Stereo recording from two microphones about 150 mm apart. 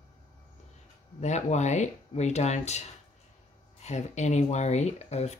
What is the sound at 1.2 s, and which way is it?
Speech, 50° left (ahead or behind).